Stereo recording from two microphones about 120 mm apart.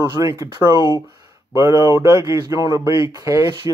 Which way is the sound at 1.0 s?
30° right (ahead or behind).